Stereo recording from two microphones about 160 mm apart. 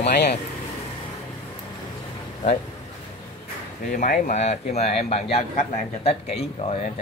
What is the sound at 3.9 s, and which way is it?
Speech, 55° left (ahead or behind).